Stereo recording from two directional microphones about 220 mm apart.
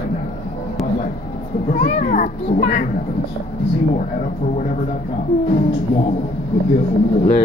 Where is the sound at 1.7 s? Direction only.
40° left (ahead or behind).